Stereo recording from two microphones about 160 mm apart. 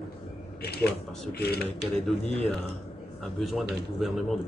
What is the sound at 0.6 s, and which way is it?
Speech, 80° left.